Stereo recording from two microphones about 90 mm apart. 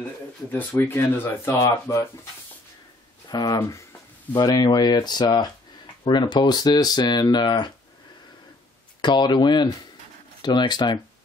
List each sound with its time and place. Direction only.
0.5 s speech: 20° left (ahead or behind)
3.3 s speech: 50° left (ahead or behind)
9.0 s speech: 55° left (ahead or behind)